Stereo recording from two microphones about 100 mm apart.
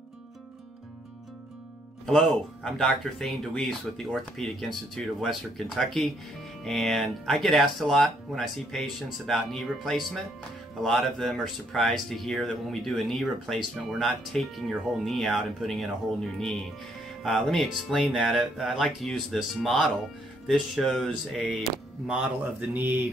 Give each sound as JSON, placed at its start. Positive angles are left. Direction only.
{"t": 2.0, "sound": "speech", "side_deg": 0}
{"t": 22.0, "sound": "speech", "side_deg": -10}